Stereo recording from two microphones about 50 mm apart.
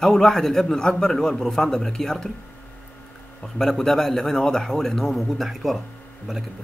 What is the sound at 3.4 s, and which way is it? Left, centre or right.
A man's voice, centre.